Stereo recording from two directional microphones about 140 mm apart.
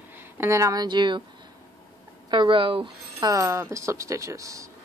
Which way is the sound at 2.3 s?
35° right (ahead or behind).